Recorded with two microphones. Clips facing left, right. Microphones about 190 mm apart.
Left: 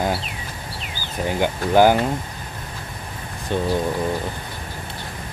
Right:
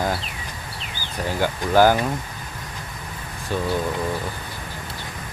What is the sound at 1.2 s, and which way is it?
Speech, 20° left (ahead or behind).